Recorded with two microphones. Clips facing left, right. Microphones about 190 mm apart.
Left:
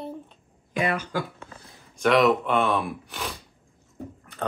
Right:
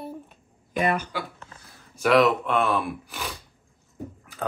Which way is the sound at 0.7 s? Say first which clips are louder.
Right 2 dB; 50° right (ahead or behind).